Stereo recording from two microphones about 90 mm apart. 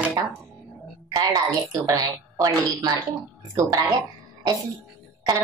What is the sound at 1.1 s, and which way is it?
A woman's voice, 40° right (ahead or behind).